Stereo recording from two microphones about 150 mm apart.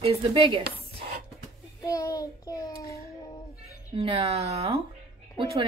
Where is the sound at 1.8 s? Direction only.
20° left (ahead or behind).